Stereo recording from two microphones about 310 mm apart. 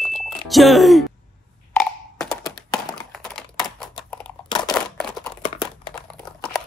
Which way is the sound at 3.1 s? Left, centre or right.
Centre.